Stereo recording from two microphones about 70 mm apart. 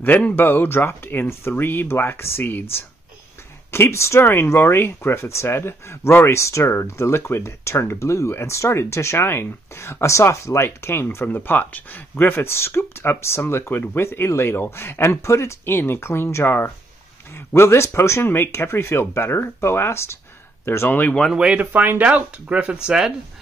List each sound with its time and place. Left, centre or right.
0.0 s speech: left
0.4 s speech: left
3.7 s speech: left
11.2 s speech: left
21.3 s speech: centre
21.5 s speech: right